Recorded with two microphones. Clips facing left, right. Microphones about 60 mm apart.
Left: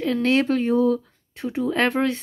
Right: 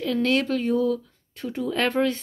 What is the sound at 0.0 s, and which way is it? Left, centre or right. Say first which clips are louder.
Speech: left 3 dB; centre.